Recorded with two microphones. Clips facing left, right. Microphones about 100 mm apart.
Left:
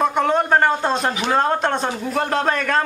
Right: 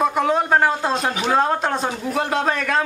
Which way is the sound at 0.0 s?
Centre (ahead or behind).